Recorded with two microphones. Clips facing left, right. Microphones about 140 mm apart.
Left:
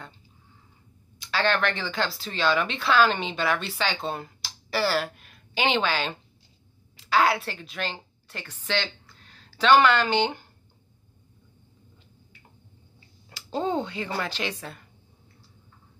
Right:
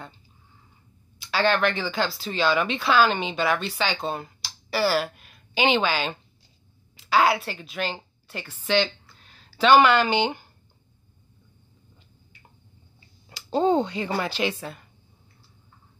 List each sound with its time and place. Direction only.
1.3 s a woman's voice: 5° right (ahead or behind)
13.5 s speech: 25° right (ahead or behind); by 14.7 s 10° right (ahead or behind)